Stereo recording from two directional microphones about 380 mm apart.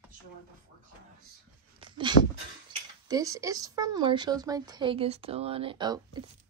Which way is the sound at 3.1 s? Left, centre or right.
Centre.